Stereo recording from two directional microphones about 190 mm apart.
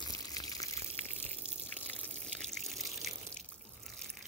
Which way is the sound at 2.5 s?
Centre (ahead or behind).